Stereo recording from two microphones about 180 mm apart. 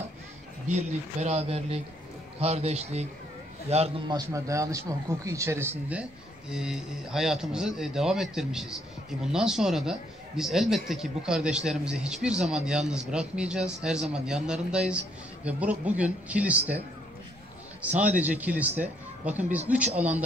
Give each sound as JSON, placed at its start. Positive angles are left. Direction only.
{"t": 0.7, "sound": "speech", "side_deg": -40}
{"t": 4.1, "sound": "a man's voice", "side_deg": -15}
{"t": 17.8, "sound": "a man's voice", "side_deg": -10}